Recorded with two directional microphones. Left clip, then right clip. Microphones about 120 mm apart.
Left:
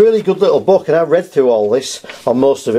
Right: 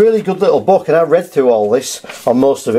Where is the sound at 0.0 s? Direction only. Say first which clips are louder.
Left 1 dB; 15° left (ahead or behind).